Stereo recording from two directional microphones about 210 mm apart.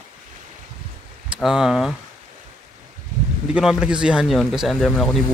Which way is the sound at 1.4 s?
Centre (ahead or behind).